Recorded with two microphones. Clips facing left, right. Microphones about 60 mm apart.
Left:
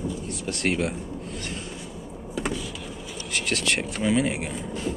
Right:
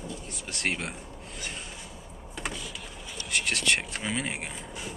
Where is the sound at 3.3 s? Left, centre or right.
Centre.